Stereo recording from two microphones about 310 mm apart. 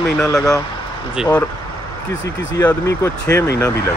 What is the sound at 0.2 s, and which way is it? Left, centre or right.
Speech, centre.